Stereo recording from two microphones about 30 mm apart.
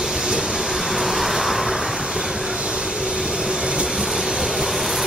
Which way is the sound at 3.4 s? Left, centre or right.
Centre.